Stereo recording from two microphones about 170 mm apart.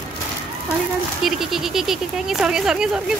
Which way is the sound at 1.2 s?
Centre (ahead or behind).